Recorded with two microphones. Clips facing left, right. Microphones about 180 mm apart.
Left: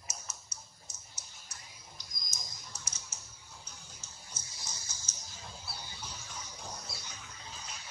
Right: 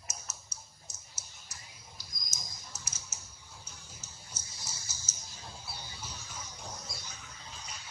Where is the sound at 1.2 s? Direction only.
5° right (ahead or behind).